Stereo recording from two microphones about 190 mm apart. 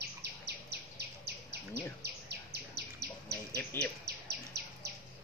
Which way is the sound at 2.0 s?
60° right (ahead or behind).